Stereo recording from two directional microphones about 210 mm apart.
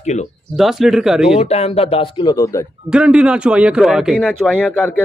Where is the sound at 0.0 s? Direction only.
35° left (ahead or behind).